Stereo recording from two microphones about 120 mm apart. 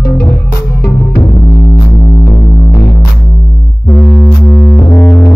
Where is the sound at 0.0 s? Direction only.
25° left (ahead or behind).